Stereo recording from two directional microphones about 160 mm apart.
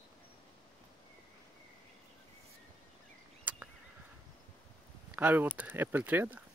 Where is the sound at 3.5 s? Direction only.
10° right (ahead or behind).